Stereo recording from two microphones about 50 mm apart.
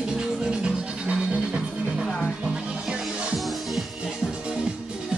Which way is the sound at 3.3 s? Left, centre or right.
Centre.